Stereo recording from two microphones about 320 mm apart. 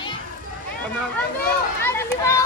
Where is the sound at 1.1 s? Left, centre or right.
Centre.